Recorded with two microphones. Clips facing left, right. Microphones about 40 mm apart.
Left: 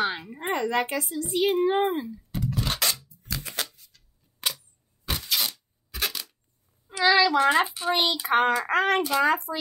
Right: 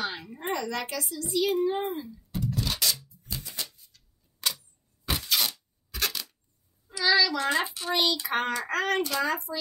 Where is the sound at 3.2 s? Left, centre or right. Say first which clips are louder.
Left 6 dB; left.